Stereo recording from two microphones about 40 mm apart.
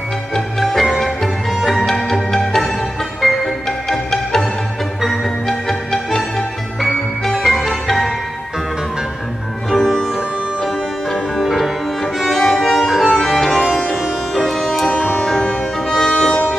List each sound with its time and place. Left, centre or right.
0.3 s music: centre
9.7 s music: centre
12.8 s music: centre
13.4 s music: centre
14.9 s music: left
15.9 s music: centre